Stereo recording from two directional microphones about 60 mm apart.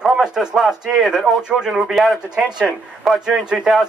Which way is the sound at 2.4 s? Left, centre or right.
Centre.